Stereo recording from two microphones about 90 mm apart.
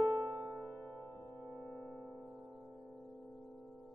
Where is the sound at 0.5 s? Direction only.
15° left (ahead or behind).